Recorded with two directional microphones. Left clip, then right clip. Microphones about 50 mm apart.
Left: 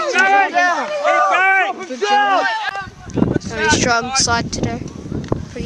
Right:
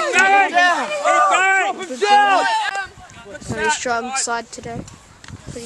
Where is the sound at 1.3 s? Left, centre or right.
Right.